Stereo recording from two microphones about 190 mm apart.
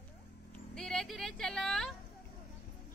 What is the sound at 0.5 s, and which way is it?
Vehicle, centre (ahead or behind).